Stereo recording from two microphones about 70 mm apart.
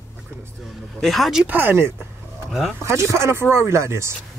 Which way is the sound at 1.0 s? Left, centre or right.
Centre.